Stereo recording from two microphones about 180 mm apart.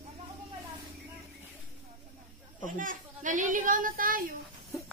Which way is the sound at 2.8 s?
45° right (ahead or behind).